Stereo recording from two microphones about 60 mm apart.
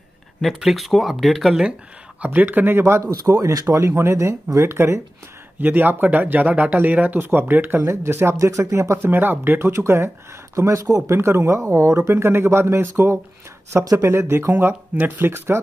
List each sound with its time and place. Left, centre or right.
0.6 s speech: centre
2.2 s speech: right
3.3 s speech: right
3.6 s speech: right
5.6 s speech: right
7.9 s speech: right
8.4 s speech: right
8.9 s speech: right
9.7 s speech: right
11.1 s speech: right
12.1 s speech: right